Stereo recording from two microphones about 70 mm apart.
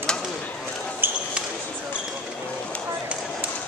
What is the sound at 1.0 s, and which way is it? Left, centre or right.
Basketball bounce, right.